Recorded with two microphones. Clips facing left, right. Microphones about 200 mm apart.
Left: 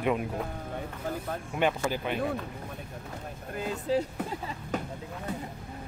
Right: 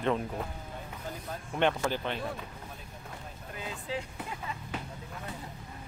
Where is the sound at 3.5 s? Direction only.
45° left (ahead or behind).